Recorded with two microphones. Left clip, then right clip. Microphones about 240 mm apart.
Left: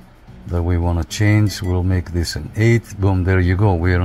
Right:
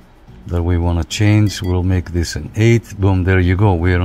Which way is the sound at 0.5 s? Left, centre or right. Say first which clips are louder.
Right 2 dB; centre.